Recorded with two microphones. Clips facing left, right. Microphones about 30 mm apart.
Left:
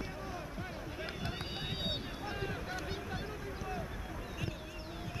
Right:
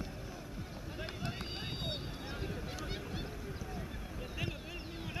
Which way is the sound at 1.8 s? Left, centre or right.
Centre.